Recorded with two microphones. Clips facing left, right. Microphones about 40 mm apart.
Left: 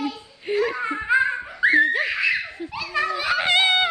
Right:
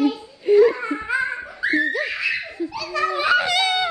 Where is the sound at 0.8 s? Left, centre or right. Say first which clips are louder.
Left 3 dB; left.